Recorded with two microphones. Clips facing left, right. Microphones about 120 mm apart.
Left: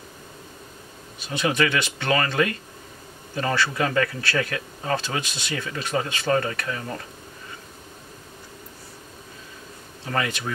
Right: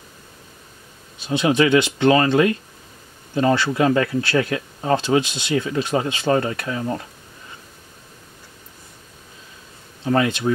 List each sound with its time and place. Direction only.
1.3 s speech: 20° right (ahead or behind)
10.0 s speech: 25° right (ahead or behind)